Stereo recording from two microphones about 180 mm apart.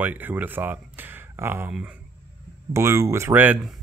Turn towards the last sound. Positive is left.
turn(degrees=-10)  # may be behind; listen again after turning